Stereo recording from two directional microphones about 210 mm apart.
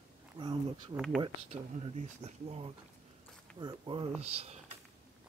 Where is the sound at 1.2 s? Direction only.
25° right (ahead or behind).